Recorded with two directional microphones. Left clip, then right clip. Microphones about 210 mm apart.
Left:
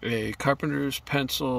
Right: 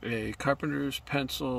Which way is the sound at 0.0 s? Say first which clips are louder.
Left 5 dB; 30° left (ahead or behind).